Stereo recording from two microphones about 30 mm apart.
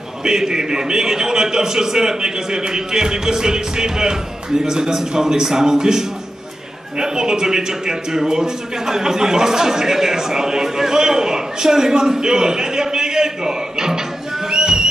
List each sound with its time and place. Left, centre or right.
0.2 s a man's voice: right